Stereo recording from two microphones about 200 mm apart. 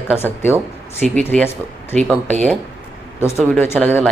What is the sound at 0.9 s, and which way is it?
Speech, 35° right (ahead or behind).